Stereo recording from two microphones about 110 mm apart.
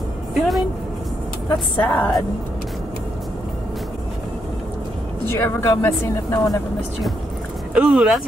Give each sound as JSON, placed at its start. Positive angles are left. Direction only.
{"t": 0.3, "sound": "music", "side_deg": 0}
{"t": 1.8, "sound": "a woman's voice", "side_deg": 15}
{"t": 5.4, "sound": "a woman's voice", "side_deg": 25}
{"t": 7.7, "sound": "speech", "side_deg": -5}